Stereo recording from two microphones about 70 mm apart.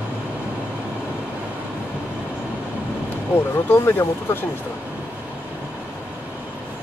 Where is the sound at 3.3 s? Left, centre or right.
Left.